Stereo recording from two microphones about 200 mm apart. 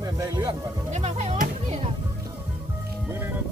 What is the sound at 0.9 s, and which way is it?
Speech, 35° right (ahead or behind).